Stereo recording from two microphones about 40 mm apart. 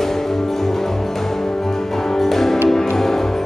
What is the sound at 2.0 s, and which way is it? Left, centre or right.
Music, centre.